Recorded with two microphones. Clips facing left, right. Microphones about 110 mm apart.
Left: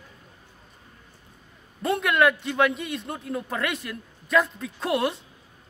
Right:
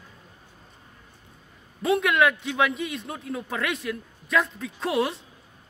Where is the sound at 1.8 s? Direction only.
Centre (ahead or behind).